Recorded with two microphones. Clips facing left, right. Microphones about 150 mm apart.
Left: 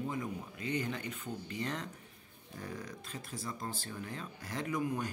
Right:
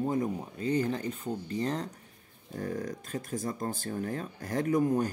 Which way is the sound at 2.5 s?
45° right (ahead or behind).